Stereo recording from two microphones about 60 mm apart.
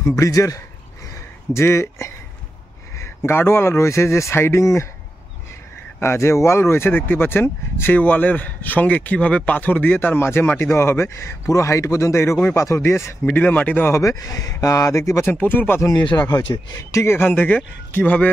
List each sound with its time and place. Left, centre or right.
0.0 s speech: left
1.5 s speech: left
3.3 s speech: left
5.9 s speech: left
7.9 s speech: left
13.2 s speech: left
13.9 s speech: left
15.2 s speech: left
16.1 s speech: left
16.5 s speech: left
17.0 s speech: left
17.3 s speech: left